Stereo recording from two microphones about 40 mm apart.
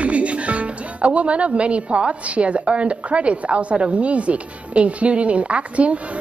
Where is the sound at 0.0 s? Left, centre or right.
Right.